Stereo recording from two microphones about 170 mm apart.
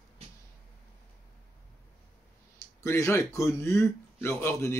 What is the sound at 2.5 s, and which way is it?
Speech, 15° left (ahead or behind).